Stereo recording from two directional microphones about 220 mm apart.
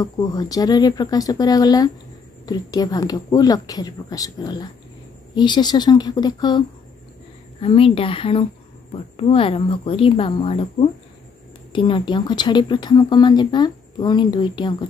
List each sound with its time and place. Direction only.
0.0 s speech: 15° left (ahead or behind)
7.6 s speech: 25° left (ahead or behind)